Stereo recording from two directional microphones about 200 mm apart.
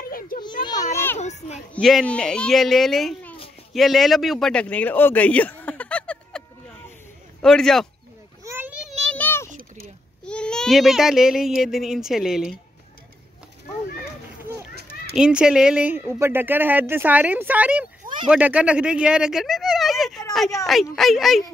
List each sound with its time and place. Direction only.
0.4 s children playing: 20° left (ahead or behind)
0.9 s children playing: 10° left (ahead or behind)
1.2 s a child's voice: 35° left (ahead or behind)
1.8 s a child's voice: centre (ahead or behind)
3.7 s a sound: centre (ahead or behind)
7.4 s a child's voice: centre (ahead or behind)
8.5 s a sound: 10° right (ahead or behind); by 9.5 s 10° left (ahead or behind)
9.5 s a sound: 45° right (ahead or behind)
10.2 s a child's voice: 5° left (ahead or behind)
14.9 s speech: 5° right (ahead or behind)
18.0 s a sound: 25° right (ahead or behind)
18.3 s a child's voice: 5° right (ahead or behind)